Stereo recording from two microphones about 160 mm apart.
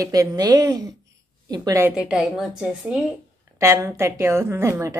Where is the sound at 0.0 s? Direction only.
20° right (ahead or behind).